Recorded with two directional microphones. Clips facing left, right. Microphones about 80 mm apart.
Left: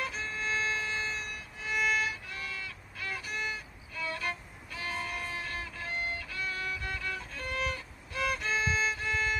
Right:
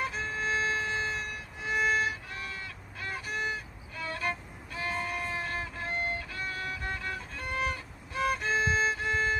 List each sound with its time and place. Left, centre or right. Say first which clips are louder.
0.0 s violin: right 3 dB; right